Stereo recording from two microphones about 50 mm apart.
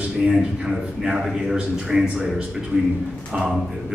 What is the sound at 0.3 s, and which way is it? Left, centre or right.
Speech, centre.